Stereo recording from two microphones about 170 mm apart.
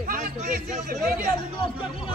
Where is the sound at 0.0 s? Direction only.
50° right (ahead or behind).